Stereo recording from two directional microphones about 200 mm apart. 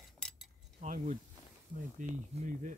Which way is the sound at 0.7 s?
40° right (ahead or behind).